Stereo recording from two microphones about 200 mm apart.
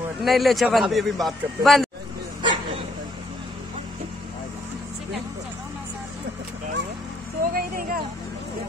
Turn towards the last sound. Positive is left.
turn(degrees=-45)  # may be behind; listen again after turning